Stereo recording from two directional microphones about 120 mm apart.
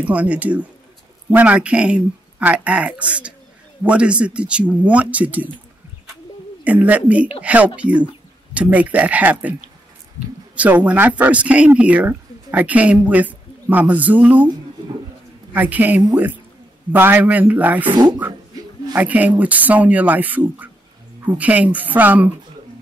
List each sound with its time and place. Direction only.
0.0 s speech: 10° right (ahead or behind)
6.6 s speech: 10° right (ahead or behind)
15.5 s speech: 15° right (ahead or behind)
17.9 s speech: 35° right (ahead or behind)
18.9 s speech: 15° right (ahead or behind)